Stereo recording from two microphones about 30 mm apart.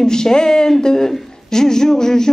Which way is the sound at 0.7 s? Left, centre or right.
Centre.